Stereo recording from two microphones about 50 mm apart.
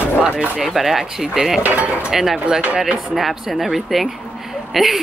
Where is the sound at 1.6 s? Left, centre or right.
Right.